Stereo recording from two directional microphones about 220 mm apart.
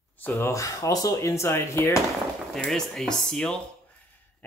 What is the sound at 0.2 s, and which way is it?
Speech, 10° left (ahead or behind).